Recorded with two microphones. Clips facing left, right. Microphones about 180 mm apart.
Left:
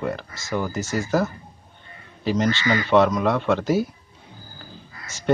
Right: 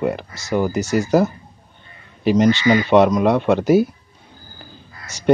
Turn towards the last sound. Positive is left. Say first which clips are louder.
# right 6 dB
turn(degrees=-15)  # may be behind; listen again after turning